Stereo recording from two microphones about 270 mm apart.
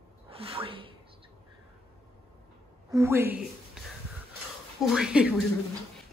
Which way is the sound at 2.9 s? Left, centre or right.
Centre.